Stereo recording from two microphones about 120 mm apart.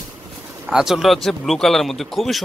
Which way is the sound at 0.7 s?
5° right (ahead or behind).